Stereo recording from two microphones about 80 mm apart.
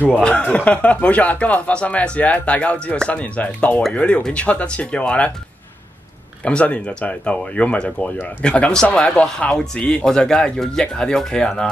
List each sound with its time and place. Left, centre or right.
0.0 s speech: centre
6.4 s speech: centre